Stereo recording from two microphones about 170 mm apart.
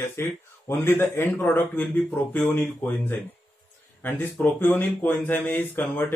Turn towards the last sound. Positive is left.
turn(degrees=10)  # may be behind; listen again after turning